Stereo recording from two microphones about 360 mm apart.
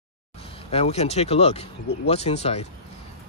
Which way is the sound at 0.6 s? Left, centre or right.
Centre.